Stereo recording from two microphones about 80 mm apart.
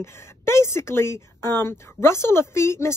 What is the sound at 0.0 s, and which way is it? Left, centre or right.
Speech, left.